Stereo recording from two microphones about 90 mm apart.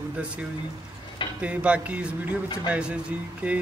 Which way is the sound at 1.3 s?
15° right (ahead or behind).